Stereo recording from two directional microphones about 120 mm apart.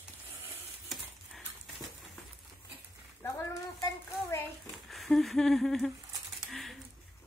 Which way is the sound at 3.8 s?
25° left (ahead or behind).